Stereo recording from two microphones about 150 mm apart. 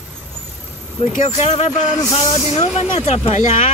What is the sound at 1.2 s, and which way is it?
Speech, 50° left (ahead or behind).